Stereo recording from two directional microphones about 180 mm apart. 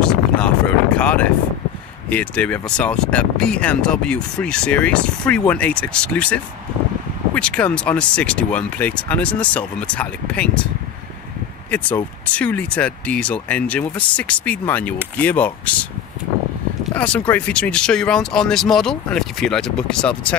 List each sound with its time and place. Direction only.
0.0 s a sound: 5° left (ahead or behind)
2.0 s speech: 5° left (ahead or behind)
11.7 s speech: 10° left (ahead or behind)
16.9 s speech: 5° left (ahead or behind)